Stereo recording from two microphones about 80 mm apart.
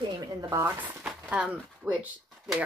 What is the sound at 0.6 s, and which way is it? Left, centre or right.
Speech, right.